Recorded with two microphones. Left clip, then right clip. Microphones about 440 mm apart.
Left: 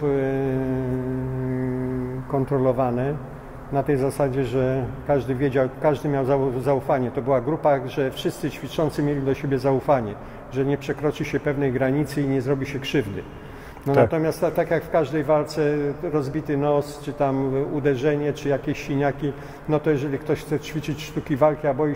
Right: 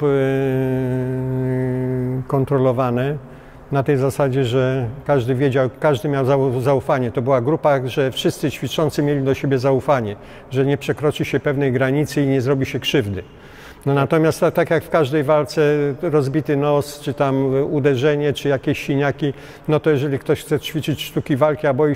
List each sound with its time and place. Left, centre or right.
0.0 s mantra: right
2.3 s a man's voice: right